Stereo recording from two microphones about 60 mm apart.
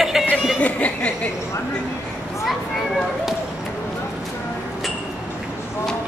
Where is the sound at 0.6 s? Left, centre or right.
Left.